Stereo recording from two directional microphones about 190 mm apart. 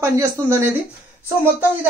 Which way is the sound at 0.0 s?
15° right (ahead or behind).